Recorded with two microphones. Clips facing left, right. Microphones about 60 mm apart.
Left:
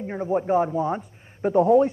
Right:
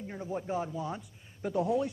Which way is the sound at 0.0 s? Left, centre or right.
Left.